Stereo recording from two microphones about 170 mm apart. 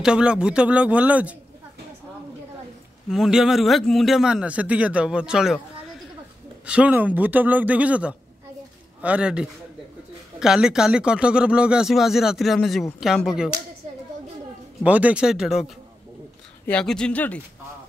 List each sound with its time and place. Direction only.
0.0 s speech: 5° right (ahead or behind)
3.1 s speech: centre (ahead or behind)
6.6 s speech: 5° right (ahead or behind)
13.8 s a sound: 40° right (ahead or behind)
14.8 s speech: 10° right (ahead or behind); by 17.4 s 10° left (ahead or behind)